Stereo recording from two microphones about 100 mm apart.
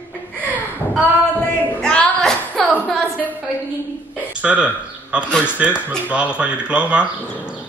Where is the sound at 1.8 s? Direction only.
10° left (ahead or behind).